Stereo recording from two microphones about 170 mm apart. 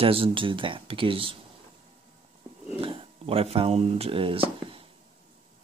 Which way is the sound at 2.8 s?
35° right (ahead or behind).